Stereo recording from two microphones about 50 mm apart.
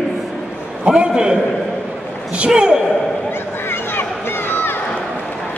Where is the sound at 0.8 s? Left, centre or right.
Centre.